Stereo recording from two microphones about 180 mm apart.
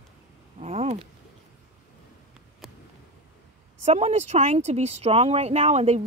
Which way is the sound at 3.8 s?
35° right (ahead or behind).